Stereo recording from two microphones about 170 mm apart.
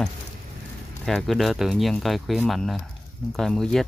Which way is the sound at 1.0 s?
Centre (ahead or behind).